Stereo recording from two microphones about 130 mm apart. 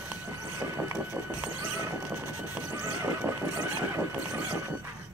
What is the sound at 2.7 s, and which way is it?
Neigh, 25° right (ahead or behind).